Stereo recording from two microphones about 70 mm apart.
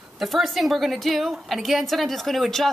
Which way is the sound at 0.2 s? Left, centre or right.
Centre.